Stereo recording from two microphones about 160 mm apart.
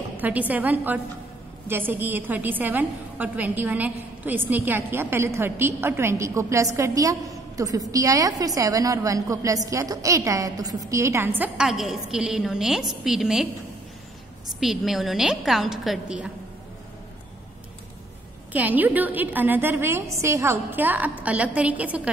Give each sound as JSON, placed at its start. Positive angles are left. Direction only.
{"t": 0.2, "sound": "a woman's voice", "side_deg": -10}
{"t": 14.6, "sound": "a woman's voice", "side_deg": 0}
{"t": 18.5, "sound": "a woman's voice", "side_deg": -10}